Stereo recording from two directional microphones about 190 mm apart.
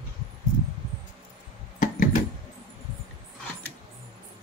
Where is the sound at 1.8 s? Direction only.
45° left (ahead or behind).